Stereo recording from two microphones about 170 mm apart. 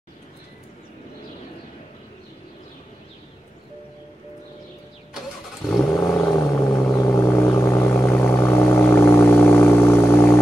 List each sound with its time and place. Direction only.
5.7 s vehicle: centre (ahead or behind)
5.9 s a sound: 20° left (ahead or behind)
6.6 s vehicle: 20° left (ahead or behind)